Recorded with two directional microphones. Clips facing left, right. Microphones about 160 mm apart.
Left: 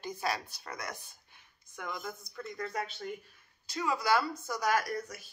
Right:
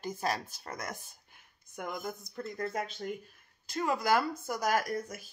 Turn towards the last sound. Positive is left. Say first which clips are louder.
# right 2 dB
turn(degrees=-45)  # may be behind; listen again after turning